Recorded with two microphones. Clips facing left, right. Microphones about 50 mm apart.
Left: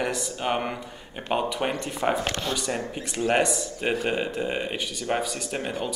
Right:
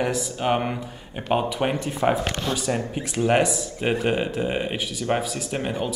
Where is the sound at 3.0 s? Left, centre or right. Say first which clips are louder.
Right 3 dB; centre.